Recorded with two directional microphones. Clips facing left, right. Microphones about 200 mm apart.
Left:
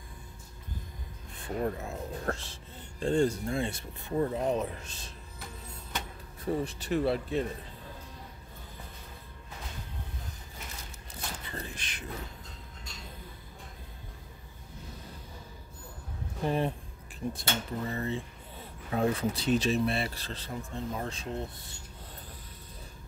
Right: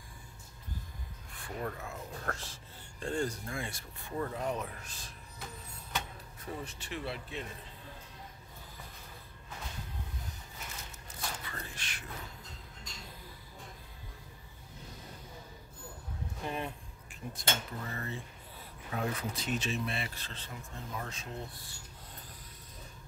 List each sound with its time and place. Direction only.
1.3 s speech: 25° left (ahead or behind)
6.4 s speech: 35° left (ahead or behind)
11.1 s a sound: 25° left (ahead or behind)
16.4 s speech: 30° left (ahead or behind)